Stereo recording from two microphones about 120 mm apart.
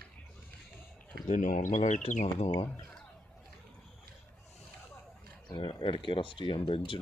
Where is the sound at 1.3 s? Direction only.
90° left.